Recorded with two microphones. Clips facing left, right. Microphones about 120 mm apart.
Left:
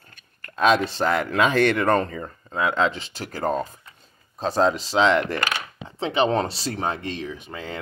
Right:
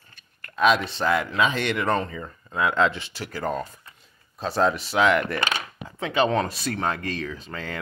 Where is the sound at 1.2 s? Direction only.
50° left (ahead or behind); by 3.1 s 25° left (ahead or behind).